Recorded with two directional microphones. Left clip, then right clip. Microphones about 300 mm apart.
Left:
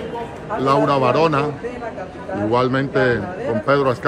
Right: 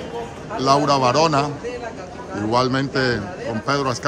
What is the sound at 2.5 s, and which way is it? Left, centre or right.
A man's voice, centre.